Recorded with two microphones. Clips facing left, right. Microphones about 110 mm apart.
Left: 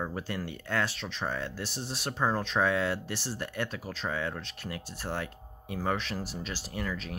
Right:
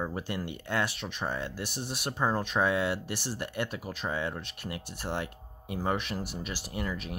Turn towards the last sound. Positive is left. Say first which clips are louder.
# even
turn(degrees=-15)  # may be behind; listen again after turning